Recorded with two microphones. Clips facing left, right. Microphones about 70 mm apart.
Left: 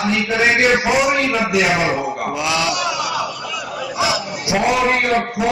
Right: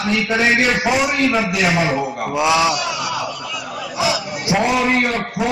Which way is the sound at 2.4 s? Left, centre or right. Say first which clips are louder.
Right 6 dB; centre.